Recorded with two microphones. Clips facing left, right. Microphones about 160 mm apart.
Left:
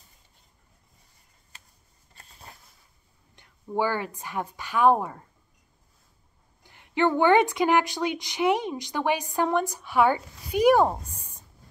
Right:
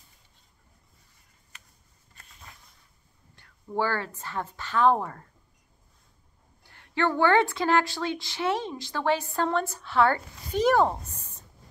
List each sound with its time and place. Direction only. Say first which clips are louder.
1.5 s a sound: even; 30° left (ahead or behind)
2.1 s patter: left 3 dB; 35° left (ahead or behind)
3.3 s a woman's voice: left 2 dB; 15° left (ahead or behind)
6.6 s a woman's voice: left 3 dB; 15° left (ahead or behind)